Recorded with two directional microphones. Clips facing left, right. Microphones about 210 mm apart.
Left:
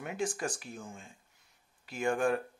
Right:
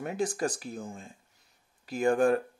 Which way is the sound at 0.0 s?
35° right (ahead or behind).